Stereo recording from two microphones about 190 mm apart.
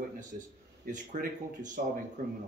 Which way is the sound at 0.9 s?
45° right (ahead or behind).